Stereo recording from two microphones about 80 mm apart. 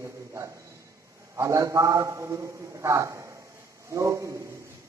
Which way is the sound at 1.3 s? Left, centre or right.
Right.